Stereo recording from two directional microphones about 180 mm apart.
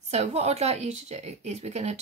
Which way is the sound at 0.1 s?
35° right (ahead or behind).